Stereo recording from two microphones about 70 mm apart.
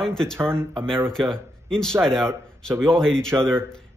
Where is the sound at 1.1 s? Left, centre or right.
Centre.